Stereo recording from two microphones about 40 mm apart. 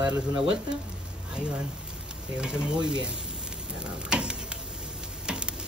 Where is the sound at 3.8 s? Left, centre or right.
Right.